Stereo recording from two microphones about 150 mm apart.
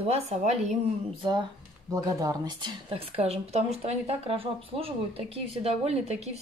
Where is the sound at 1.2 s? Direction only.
30° right (ahead or behind).